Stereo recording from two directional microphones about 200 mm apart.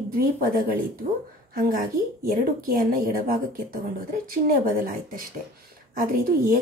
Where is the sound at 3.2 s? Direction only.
45° right (ahead or behind).